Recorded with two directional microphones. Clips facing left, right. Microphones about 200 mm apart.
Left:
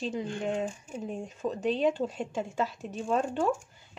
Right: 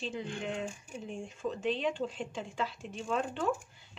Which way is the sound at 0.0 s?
40° left (ahead or behind).